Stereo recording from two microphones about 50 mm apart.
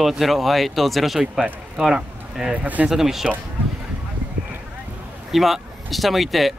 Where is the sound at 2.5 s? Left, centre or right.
Right.